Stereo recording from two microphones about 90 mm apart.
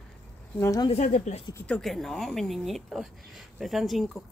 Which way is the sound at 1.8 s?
Centre (ahead or behind).